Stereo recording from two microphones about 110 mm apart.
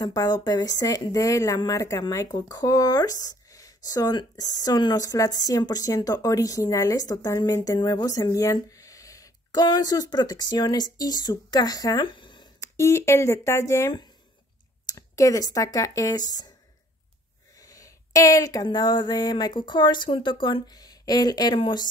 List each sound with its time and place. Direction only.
0.0 s speech: 35° left (ahead or behind)
12.5 s speech: 25° left (ahead or behind)
17.6 s a sound: 30° left (ahead or behind)